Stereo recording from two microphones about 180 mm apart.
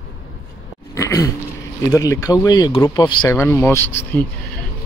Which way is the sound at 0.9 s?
15° left (ahead or behind).